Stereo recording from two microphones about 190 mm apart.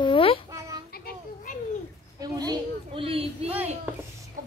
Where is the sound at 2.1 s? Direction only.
20° right (ahead or behind).